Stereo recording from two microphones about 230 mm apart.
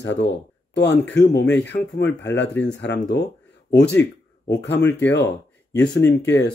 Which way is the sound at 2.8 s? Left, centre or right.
Left.